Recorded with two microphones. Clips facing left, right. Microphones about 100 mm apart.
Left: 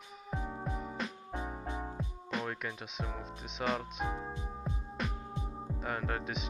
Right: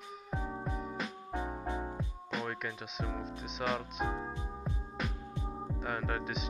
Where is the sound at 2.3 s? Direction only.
Centre (ahead or behind).